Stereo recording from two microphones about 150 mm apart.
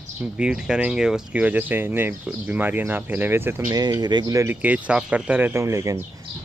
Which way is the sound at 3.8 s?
30° right (ahead or behind).